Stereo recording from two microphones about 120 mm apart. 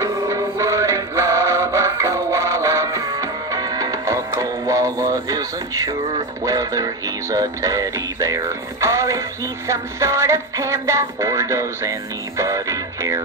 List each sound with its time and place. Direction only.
0.0 s music: 25° right (ahead or behind)